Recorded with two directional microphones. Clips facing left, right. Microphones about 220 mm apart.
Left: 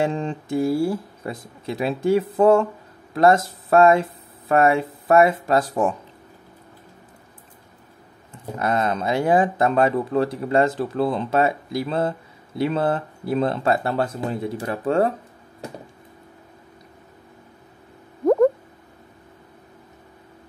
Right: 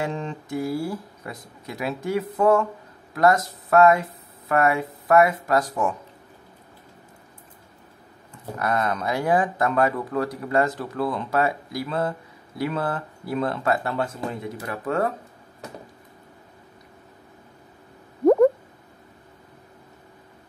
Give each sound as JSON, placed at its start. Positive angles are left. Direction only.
{"t": 0.0, "sound": "speech", "side_deg": 30}
{"t": 8.5, "sound": "speech", "side_deg": 25}